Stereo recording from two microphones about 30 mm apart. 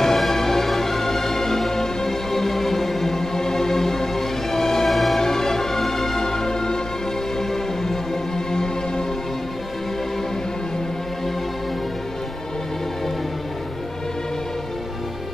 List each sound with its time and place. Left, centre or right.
0.0 s music: centre
4.8 s music: centre
5.2 s music: centre